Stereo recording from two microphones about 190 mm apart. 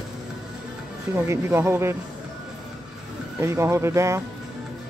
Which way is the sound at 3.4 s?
15° right (ahead or behind).